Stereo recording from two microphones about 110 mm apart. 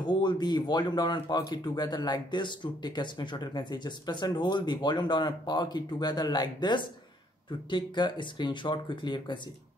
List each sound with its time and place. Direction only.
0.0 s speech: 40° left (ahead or behind)